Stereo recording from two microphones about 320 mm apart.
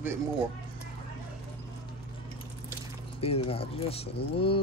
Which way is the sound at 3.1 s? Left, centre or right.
Centre.